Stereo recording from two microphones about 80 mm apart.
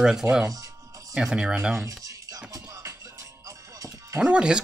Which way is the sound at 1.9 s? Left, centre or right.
Right.